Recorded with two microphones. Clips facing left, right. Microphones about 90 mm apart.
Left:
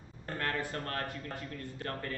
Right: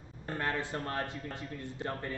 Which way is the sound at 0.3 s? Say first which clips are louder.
Right 1 dB; 20° right (ahead or behind).